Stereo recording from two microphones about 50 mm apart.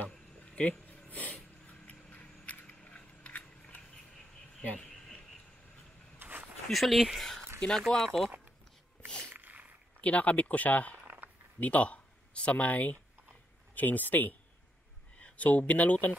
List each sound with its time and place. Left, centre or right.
0.5 s speech: left
1.0 s a sound: left
6.1 s a sound: right
6.7 s speech: centre
7.8 s speech: centre
9.3 s sneeze: right
10.0 s speech: left